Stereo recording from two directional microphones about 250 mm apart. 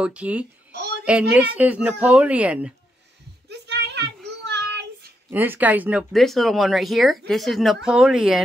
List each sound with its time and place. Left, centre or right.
0.0 s speech: centre
0.7 s a sound: right
1.3 s speech: centre
3.4 s a sound: right
4.5 s child singing: right
5.3 s speech: centre